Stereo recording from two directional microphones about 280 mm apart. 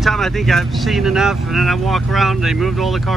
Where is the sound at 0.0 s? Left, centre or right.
Centre.